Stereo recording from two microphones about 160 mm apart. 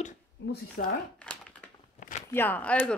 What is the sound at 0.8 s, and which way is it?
Speech, 65° left (ahead or behind).